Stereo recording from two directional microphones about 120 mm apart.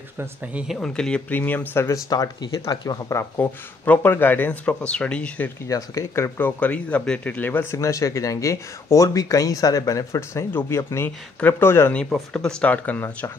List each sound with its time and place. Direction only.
0.2 s speech: 10° right (ahead or behind)
0.7 s speech: 5° left (ahead or behind)
2.0 s speech: 30° left (ahead or behind)
3.3 s speech: 15° left (ahead or behind)
5.7 s speech: 25° left (ahead or behind)
12.0 s speech: 5° left (ahead or behind)